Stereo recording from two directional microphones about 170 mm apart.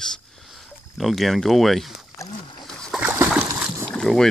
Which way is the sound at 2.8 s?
Centre (ahead or behind).